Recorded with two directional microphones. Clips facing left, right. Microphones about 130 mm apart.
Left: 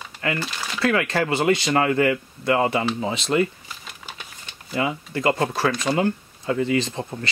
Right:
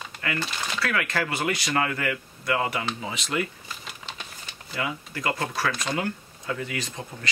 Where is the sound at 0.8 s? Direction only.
30° left (ahead or behind).